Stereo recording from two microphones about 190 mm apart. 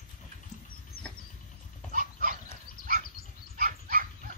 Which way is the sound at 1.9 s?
45° right (ahead or behind).